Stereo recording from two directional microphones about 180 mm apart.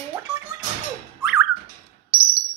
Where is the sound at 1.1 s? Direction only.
5° right (ahead or behind).